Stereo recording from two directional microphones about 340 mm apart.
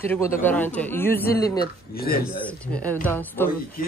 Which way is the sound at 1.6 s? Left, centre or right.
Left.